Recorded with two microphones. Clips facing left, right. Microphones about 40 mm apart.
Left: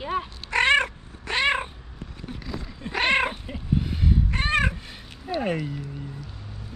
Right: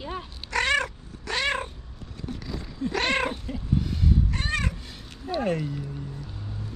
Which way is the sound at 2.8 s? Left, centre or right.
Left.